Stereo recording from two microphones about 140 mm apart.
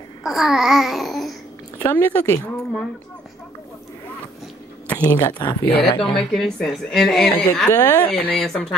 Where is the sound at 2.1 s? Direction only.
15° left (ahead or behind).